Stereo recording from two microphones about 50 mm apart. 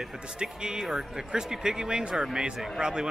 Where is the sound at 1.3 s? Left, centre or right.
Centre.